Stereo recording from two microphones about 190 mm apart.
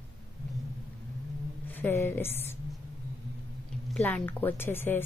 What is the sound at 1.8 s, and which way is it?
Speech, 10° left (ahead or behind).